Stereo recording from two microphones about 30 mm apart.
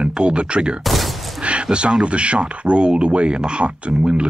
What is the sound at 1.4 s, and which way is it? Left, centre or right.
Speech, right.